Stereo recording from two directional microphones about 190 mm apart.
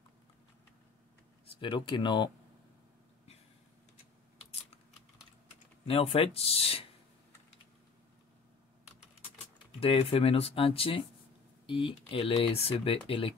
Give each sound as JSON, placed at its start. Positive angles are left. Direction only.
{"t": 1.5, "sound": "speech", "side_deg": 25}
{"t": 5.9, "sound": "speech", "side_deg": 30}
{"t": 9.8, "sound": "speech", "side_deg": 30}